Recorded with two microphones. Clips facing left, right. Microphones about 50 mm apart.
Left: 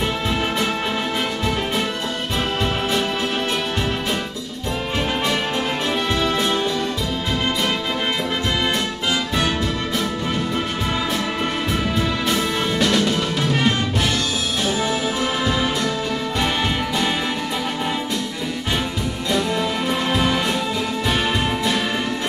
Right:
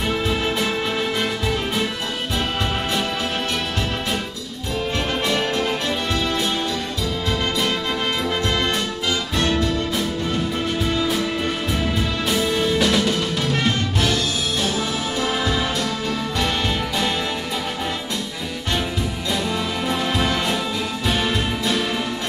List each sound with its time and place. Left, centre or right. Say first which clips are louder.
12.7 s music: even; centre
13.6 s music: left 2 dB; centre
19.3 s music: left 4 dB; centre